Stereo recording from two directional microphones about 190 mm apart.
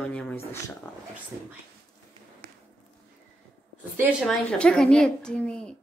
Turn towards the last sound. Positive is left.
turn(degrees=5)  # may be behind; listen again after turning